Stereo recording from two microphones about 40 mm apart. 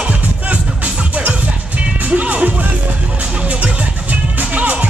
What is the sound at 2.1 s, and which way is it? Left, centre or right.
Music, right.